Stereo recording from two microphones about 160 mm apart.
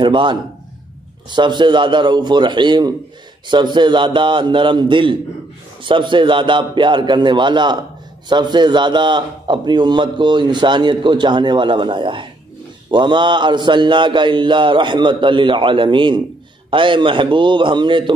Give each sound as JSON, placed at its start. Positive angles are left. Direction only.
{"t": 0.0, "sound": "a man's voice", "side_deg": -30}